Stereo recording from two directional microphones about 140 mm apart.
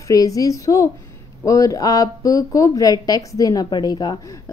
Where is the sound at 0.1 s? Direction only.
25° left (ahead or behind).